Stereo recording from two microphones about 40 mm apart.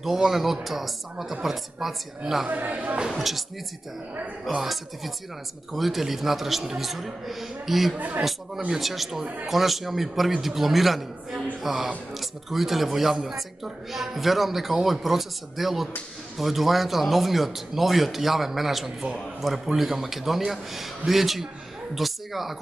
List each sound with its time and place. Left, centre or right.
0.0 s a woman's voice: centre
2.4 s speech: right
3.1 s speech: centre
4.6 s speech: centre